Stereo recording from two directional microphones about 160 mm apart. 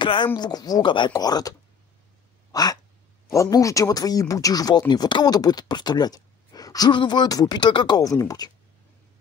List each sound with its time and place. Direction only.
0.0 s speech: 30° left (ahead or behind)
2.5 s a sound: 25° left (ahead or behind)
3.3 s speech: 20° left (ahead or behind)